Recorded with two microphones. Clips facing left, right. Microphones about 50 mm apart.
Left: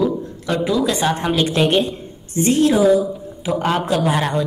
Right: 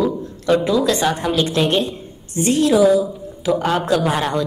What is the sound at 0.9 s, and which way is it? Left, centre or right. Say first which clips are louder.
Speech: right 1 dB; centre.